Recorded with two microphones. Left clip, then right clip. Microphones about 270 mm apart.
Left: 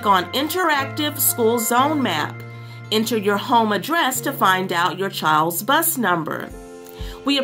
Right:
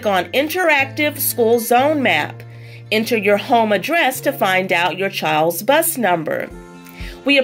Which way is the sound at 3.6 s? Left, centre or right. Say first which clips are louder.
Right 4 dB; centre.